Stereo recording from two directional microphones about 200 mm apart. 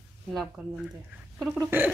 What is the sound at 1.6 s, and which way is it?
Speech, 10° right (ahead or behind).